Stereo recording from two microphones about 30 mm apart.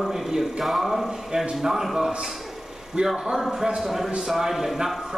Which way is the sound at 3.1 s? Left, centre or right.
Centre.